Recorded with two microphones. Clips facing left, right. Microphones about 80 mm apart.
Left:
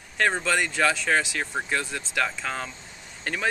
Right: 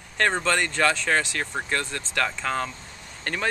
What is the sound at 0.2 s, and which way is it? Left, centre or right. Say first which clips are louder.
Speech: right 1 dB; centre.